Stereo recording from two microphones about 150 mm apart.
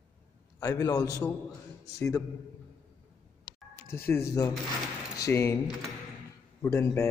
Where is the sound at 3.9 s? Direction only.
15° left (ahead or behind).